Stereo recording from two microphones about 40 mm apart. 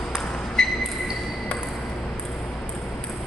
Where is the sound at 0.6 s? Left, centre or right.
Centre.